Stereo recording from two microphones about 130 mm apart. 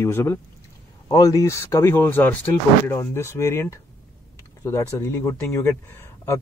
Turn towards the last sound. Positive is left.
turn(degrees=20)  # may be behind; listen again after turning